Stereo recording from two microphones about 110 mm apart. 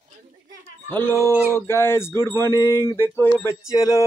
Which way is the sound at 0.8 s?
15° left (ahead or behind).